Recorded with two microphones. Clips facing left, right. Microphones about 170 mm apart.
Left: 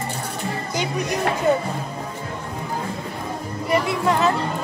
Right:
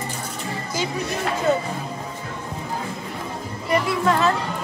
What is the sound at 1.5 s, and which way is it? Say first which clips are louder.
Speech: left 1 dB; 15° left (ahead or behind).